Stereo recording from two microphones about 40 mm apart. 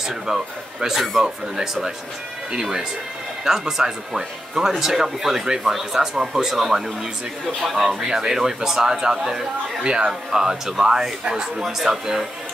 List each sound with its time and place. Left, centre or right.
0.1 s speech: centre
2.5 s speech: centre
7.6 s speech: centre
9.8 s speech: right; by 12.3 s centre